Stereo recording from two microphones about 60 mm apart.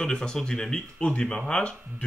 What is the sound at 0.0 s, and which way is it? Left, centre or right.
A man's voice, centre.